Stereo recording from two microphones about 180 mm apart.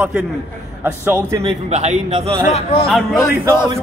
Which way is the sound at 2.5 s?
35° left (ahead or behind).